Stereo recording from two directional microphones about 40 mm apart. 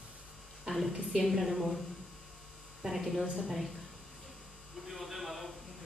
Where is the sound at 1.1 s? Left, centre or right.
Centre.